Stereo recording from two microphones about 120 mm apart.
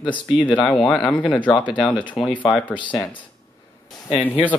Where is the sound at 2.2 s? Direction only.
10° left (ahead or behind).